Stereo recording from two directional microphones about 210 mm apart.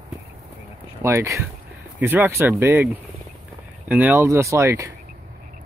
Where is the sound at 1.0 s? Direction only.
15° right (ahead or behind).